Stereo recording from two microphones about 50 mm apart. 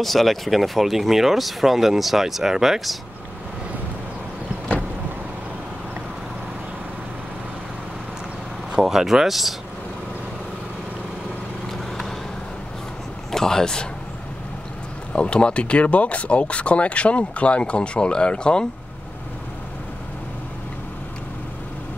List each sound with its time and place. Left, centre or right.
0.0 s speech: centre
8.7 s speech: centre
13.3 s speech: centre
15.1 s speech: left